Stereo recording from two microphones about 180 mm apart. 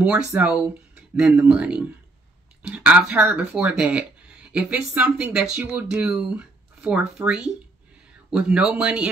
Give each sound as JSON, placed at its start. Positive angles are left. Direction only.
{"t": 0.0, "sound": "speech", "side_deg": -10}